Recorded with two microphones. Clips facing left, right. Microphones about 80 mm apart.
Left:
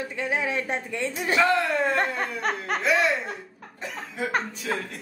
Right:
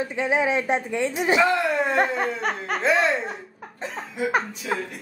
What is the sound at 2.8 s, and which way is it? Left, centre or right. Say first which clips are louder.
Speech: right 3 dB; right.